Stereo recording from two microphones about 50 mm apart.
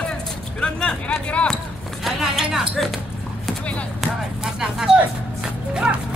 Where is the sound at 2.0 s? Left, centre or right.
Centre.